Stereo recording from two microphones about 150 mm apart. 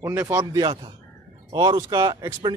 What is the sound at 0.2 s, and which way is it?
Speech, 15° right (ahead or behind).